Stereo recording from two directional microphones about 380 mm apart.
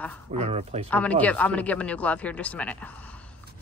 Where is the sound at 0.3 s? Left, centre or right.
Centre.